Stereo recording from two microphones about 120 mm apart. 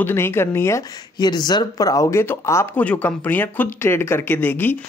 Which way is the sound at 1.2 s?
35° left (ahead or behind).